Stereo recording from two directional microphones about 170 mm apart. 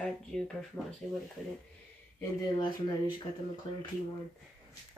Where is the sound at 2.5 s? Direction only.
20° left (ahead or behind).